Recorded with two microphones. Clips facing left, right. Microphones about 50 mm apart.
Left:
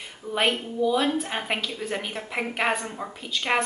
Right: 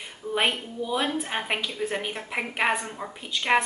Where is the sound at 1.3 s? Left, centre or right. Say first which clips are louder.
Even; centre.